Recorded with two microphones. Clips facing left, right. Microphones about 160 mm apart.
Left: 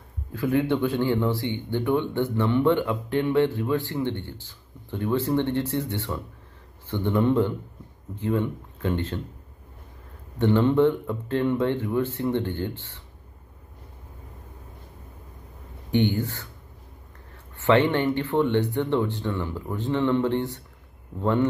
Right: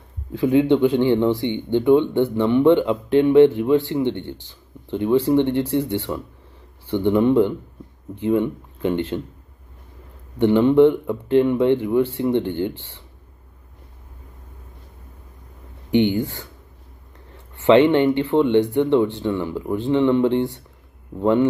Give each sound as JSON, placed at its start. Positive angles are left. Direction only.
{"t": 0.3, "sound": "speech", "side_deg": -20}
{"t": 10.4, "sound": "speech", "side_deg": -15}
{"t": 15.9, "sound": "speech", "side_deg": -20}
{"t": 17.6, "sound": "speech", "side_deg": -15}